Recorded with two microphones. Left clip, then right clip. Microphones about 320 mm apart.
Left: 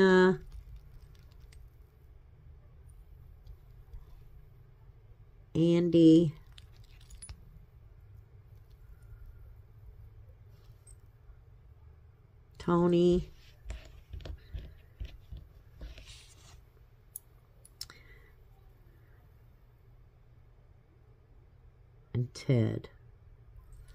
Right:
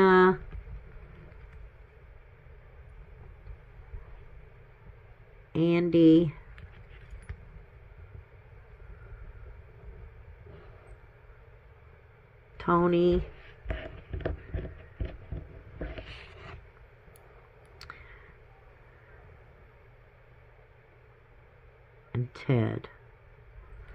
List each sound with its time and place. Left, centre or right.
0.0 s a sound: centre
5.5 s speech: centre
12.5 s speech: centre
14.5 s a sound: left
17.8 s clicking: centre
22.1 s speech: centre